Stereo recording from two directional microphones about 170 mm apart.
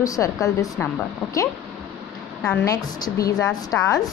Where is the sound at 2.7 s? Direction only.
20° left (ahead or behind).